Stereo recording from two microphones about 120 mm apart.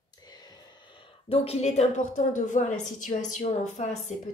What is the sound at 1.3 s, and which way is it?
A woman's voice, 55° left (ahead or behind).